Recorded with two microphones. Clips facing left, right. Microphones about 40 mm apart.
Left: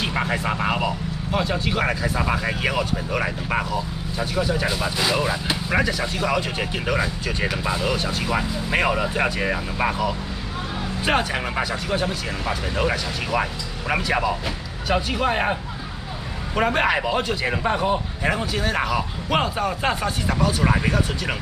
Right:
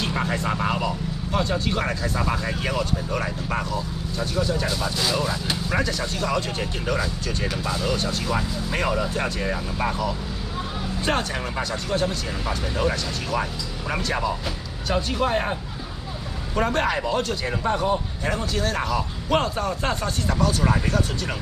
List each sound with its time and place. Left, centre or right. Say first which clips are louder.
0.0 s speech: left 1 dB; centre
11.1 s speech: left 3 dB; left
15.2 s speech: left 2 dB; left
16.5 s speech: left 3 dB; centre
20.7 s speech: left 2 dB; left